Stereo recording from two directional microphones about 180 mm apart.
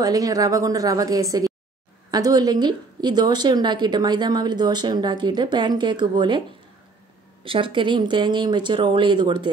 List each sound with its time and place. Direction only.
0.0 s speech: 20° right (ahead or behind)
7.4 s speech: 30° right (ahead or behind)